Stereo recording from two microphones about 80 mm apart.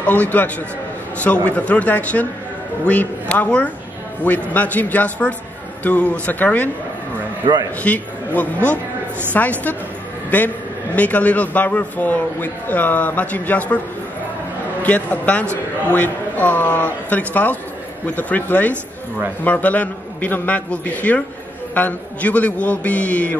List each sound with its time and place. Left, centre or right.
0.0 s a man's voice: centre
7.4 s a man's voice: right
7.8 s a man's voice: centre
14.8 s a man's voice: left